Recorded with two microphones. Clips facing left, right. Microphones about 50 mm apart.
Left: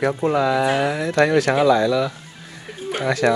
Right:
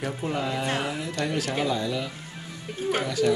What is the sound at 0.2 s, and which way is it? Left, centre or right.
Speech, left.